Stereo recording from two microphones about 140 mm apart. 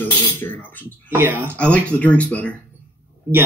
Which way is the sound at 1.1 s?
15° right (ahead or behind).